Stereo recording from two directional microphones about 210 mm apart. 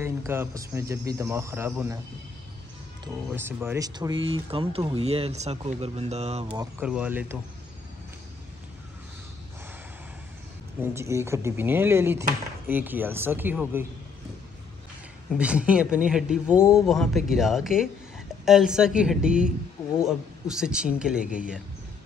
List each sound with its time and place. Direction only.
0.0 s speech: 10° right (ahead or behind)
3.3 s speech: 10° right (ahead or behind); by 6.4 s 30° right (ahead or behind)
6.5 s speech: 15° right (ahead or behind)
11.0 s speech: 15° right (ahead or behind)
15.3 s speech: 5° right (ahead or behind)